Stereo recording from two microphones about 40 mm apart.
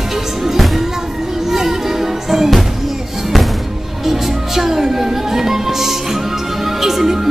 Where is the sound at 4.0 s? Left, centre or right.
Centre.